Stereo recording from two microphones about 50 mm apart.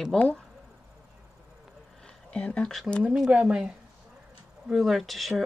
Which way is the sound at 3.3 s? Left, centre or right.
Centre.